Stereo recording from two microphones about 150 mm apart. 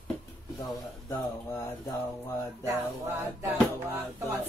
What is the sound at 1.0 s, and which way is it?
Speech, 15° left (ahead or behind).